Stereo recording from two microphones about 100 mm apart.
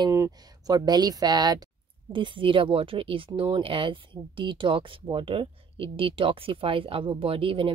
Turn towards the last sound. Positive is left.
turn(degrees=-65)  # may be behind; listen again after turning